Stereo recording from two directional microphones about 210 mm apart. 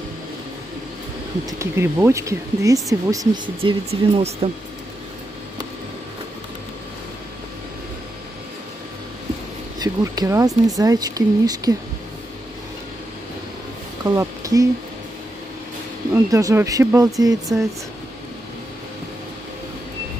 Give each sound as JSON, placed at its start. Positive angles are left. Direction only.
{"t": 1.6, "sound": "speech", "side_deg": -15}
{"t": 9.8, "sound": "speech", "side_deg": -15}
{"t": 14.0, "sound": "speech", "side_deg": -15}
{"t": 16.3, "sound": "speech", "side_deg": -15}